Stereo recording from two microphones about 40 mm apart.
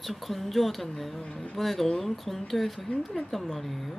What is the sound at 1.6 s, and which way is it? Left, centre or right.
Speech, centre.